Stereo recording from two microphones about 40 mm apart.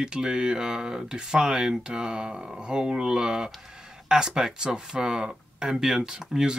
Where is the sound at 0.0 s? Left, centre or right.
Right.